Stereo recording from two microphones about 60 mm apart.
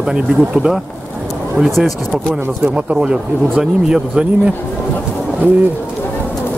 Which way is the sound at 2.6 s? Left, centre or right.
Centre.